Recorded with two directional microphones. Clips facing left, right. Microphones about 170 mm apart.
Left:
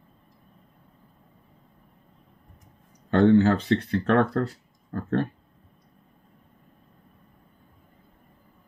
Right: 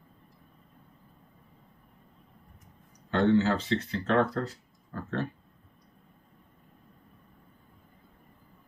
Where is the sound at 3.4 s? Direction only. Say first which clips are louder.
Left 5 dB; 55° left (ahead or behind).